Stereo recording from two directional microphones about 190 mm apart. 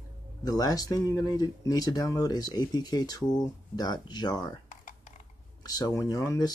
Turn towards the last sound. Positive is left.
turn(degrees=20)  # may be behind; listen again after turning